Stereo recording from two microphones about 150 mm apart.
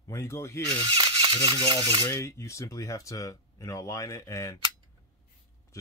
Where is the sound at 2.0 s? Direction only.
20° left (ahead or behind).